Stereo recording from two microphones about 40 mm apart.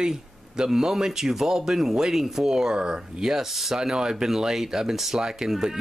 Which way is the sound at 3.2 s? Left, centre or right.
Centre.